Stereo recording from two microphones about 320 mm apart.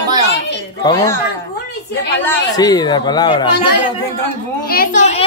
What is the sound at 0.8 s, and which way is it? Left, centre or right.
Speech, centre.